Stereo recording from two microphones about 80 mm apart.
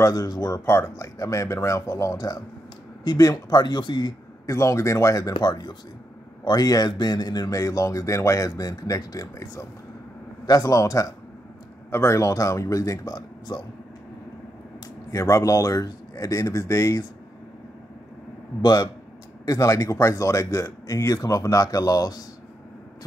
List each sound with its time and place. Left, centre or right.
0.0 s speech: left
0.7 s speech: left
3.1 s speech: left
4.5 s speech: left
10.4 s speech: left
13.5 s speech: left
15.1 s speech: left
18.6 s speech: left
19.4 s speech: left